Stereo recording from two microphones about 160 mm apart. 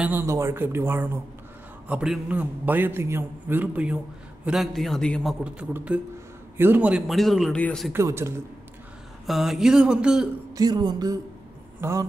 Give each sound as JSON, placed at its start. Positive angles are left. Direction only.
{"t": 0.0, "sound": "a man's voice", "side_deg": -15}
{"t": 5.4, "sound": "a man's voice", "side_deg": -10}
{"t": 7.9, "sound": "a man's voice", "side_deg": -15}
{"t": 9.2, "sound": "a man's voice", "side_deg": 0}
{"t": 10.5, "sound": "a sound", "side_deg": -25}